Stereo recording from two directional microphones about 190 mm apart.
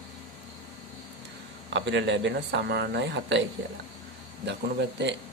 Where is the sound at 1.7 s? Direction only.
70° right (ahead or behind).